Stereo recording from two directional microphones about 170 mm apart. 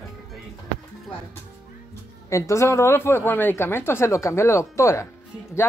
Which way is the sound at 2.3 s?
15° left (ahead or behind).